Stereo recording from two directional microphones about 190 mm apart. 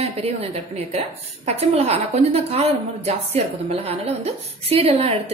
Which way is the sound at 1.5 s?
35° right (ahead or behind).